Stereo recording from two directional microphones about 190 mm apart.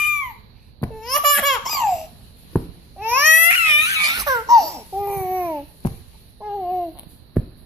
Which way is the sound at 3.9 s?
20° right (ahead or behind).